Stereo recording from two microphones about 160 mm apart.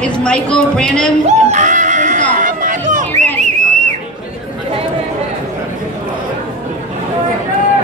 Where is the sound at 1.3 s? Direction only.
45° right (ahead or behind).